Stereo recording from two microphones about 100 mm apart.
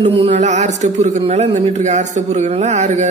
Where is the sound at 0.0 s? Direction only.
90° right.